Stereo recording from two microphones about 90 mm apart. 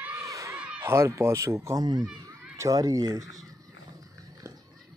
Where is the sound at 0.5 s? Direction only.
10° right (ahead or behind).